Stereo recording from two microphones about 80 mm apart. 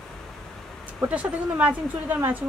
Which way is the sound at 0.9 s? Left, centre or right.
Centre.